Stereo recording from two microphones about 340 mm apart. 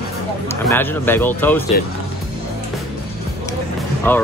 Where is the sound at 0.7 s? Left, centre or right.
Centre.